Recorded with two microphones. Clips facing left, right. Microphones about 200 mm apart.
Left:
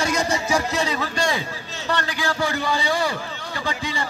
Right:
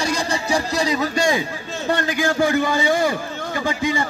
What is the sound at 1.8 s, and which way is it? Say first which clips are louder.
A man's voice: right 5 dB; 50° right (ahead or behind).